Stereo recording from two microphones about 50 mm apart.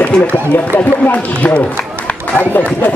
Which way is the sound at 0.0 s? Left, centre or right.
Left.